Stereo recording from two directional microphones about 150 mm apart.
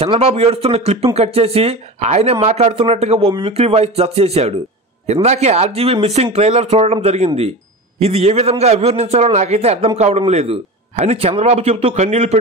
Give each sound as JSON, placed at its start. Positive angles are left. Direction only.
{"t": 0.0, "sound": "a man's voice", "side_deg": -40}
{"t": 3.3, "sound": "speech", "side_deg": -30}
{"t": 3.5, "sound": "a man's voice", "side_deg": -45}